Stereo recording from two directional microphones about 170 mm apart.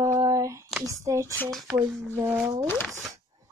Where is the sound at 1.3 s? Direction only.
10° left (ahead or behind).